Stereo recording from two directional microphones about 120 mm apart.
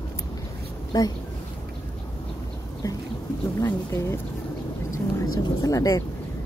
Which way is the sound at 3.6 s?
25° left (ahead or behind).